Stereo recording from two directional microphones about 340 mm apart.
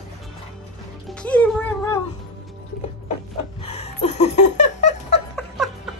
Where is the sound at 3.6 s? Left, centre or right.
Centre.